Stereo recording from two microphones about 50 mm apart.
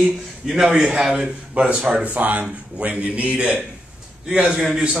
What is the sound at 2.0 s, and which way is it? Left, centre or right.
Speech, right.